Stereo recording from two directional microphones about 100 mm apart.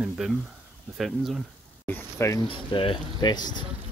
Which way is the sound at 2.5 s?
60° left (ahead or behind).